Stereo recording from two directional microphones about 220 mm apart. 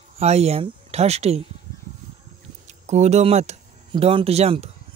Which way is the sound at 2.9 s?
30° right (ahead or behind).